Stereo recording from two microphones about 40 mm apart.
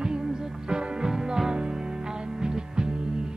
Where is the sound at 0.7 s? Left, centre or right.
Centre.